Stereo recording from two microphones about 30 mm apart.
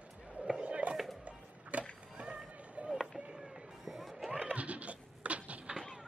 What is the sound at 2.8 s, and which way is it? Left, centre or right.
Chop, right.